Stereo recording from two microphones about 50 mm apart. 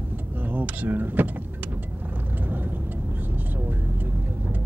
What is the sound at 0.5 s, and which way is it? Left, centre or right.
Speech, right.